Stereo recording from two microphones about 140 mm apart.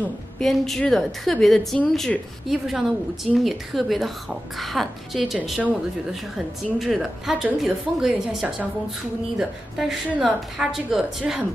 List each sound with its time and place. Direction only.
0.0 s a woman's voice: 5° left (ahead or behind)